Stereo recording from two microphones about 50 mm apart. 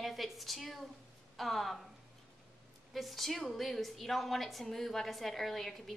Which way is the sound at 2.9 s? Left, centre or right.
Centre.